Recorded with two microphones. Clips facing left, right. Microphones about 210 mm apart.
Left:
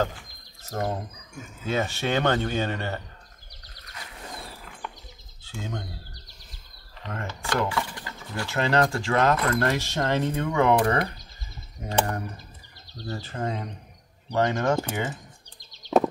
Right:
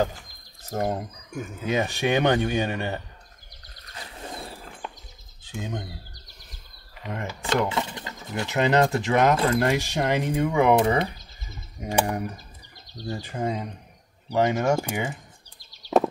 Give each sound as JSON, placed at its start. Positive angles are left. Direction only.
{"t": 0.7, "sound": "speech", "side_deg": -15}
{"t": 3.9, "sound": "a sound", "side_deg": -30}
{"t": 5.4, "sound": "speech", "side_deg": -15}
{"t": 7.0, "sound": "speech", "side_deg": -15}
{"t": 10.8, "sound": "speech", "side_deg": -25}
{"t": 11.8, "sound": "speech", "side_deg": -15}
{"t": 15.7, "sound": "a sound", "side_deg": -5}